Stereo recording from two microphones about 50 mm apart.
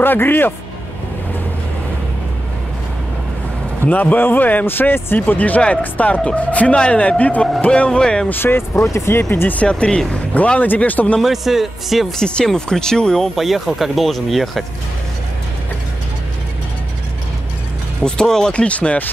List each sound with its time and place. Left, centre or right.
0.0 s speech: left
3.8 s speech: left; by 8.3 s centre
8.3 s speech: left
8.8 s speech: left
9.5 s speech: left
11.1 s a man's voice: centre
12.2 s speech: centre
13.7 s a man's voice: centre
18.0 s speech: centre
18.5 s speech: left